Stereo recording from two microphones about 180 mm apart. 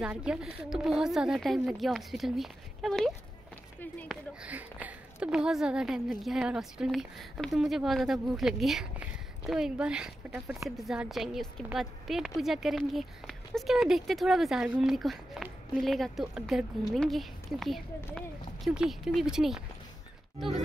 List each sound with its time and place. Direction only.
0.0 s a woman's voice: 5° right (ahead or behind)
4.1 s a woman's voice: 5° right (ahead or behind)